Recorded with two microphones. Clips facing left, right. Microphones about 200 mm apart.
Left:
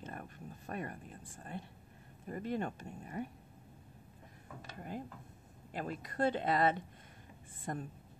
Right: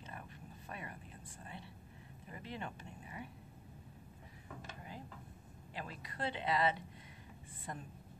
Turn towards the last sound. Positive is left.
turn(degrees=50)  # may be behind; listen again after turning